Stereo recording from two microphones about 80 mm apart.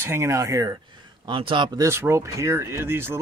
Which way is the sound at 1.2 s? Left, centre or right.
Right.